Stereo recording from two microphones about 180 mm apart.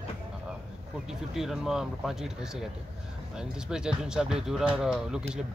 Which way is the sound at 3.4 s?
5° right (ahead or behind).